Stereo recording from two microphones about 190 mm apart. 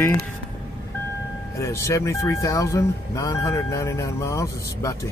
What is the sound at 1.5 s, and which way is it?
Speech, 15° left (ahead or behind).